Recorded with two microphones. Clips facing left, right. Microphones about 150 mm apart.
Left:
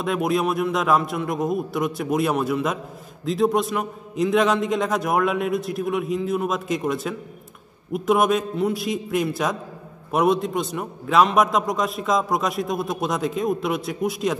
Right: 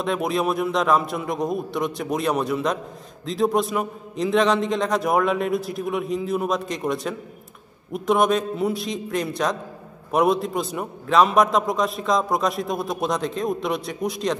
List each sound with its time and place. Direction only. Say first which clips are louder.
0.0 s a man's voice: left 1 dB; centre (ahead or behind)